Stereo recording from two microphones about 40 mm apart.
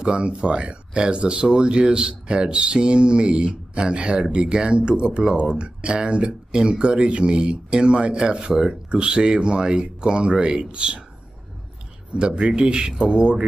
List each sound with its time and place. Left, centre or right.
0.1 s speech: right
12.1 s speech: right